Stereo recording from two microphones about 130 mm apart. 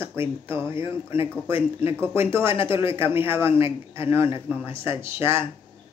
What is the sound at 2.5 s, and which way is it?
Speech, 40° left (ahead or behind).